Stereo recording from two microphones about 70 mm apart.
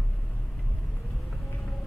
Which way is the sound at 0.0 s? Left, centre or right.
Centre.